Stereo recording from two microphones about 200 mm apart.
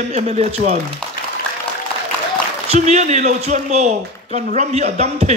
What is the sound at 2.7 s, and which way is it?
Speech, 35° right (ahead or behind).